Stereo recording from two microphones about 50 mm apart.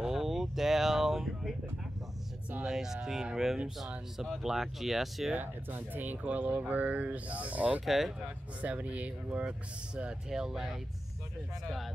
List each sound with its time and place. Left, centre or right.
0.0 s a sound: centre
2.6 s speech: centre
5.3 s speech: right
7.8 s speech: centre
8.5 s speech: right
10.3 s speech: centre